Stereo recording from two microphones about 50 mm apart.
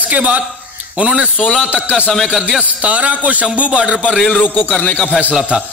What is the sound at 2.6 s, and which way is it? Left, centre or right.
Speech, right.